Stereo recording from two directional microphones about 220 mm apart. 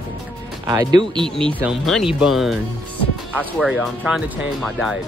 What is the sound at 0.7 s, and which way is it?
Speech, 15° right (ahead or behind).